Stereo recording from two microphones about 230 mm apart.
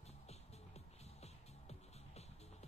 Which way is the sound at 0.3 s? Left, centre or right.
Left.